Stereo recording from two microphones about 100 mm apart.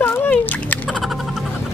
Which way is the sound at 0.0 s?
20° left (ahead or behind).